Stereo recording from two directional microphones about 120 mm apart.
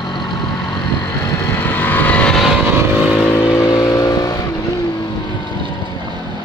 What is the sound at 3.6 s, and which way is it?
Vehicle, 35° left (ahead or behind).